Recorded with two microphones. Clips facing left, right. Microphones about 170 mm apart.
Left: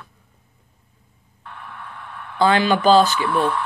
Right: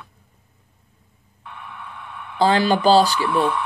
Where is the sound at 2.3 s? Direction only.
35° right (ahead or behind).